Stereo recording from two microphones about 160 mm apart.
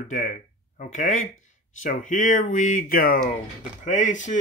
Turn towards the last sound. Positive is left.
turn(degrees=50)  # may be behind; listen again after turning